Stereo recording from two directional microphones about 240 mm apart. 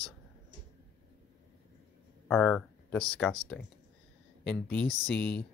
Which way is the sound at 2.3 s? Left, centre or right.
Centre.